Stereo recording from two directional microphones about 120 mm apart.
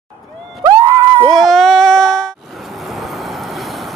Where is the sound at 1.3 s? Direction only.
5° left (ahead or behind).